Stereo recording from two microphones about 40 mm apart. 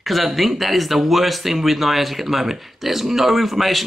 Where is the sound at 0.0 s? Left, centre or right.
Centre.